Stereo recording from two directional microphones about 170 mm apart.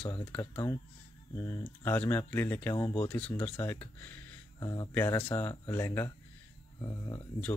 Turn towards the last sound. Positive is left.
turn(degrees=15)  # may be behind; listen again after turning